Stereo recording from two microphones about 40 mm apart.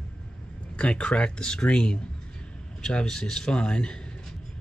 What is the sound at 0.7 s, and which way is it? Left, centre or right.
Speech, left.